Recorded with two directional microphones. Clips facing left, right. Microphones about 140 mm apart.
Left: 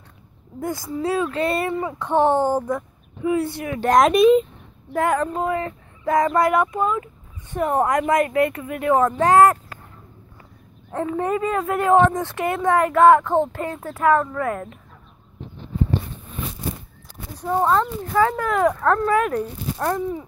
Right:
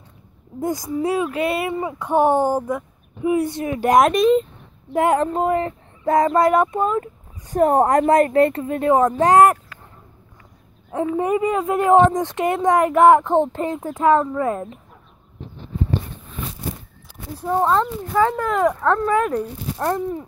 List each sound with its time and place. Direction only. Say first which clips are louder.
0.6 s speech: right 3 dB; 20° right (ahead or behind)
3.8 s speech: right 1 dB; 10° right (ahead or behind)
4.1 s speech: left 2 dB; 5° left (ahead or behind)
4.9 s speech: right 3 dB; 25° right (ahead or behind)
7.0 s a woman's voice: right 5 dB; 40° right (ahead or behind); by 9.6 s 20° right (ahead or behind)
11.1 s speech: right 2 dB; 15° right (ahead or behind)
17.4 s speech: right 1 dB; 5° right (ahead or behind)
19.3 s speech: right 1 dB; 20° right (ahead or behind)